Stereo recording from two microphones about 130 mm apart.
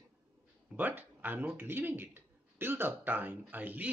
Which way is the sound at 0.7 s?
15° right (ahead or behind).